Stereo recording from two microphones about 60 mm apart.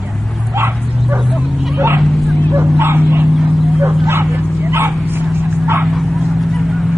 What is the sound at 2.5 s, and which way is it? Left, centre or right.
Bow-wow, right.